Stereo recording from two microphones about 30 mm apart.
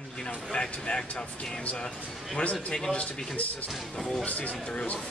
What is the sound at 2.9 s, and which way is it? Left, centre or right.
Speech, left.